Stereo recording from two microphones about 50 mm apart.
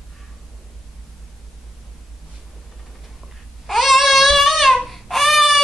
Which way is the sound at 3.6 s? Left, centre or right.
Centre.